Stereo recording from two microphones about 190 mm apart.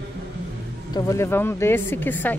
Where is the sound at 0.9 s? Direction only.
15° left (ahead or behind).